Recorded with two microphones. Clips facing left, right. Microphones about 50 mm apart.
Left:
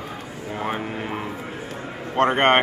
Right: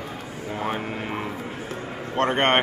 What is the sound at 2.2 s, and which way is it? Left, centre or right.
Speech, centre.